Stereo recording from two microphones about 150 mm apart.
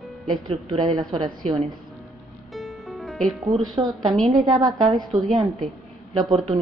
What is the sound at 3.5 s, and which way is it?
Speech, 30° right (ahead or behind).